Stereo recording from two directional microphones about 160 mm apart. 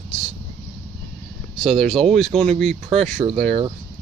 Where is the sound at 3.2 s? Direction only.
30° right (ahead or behind).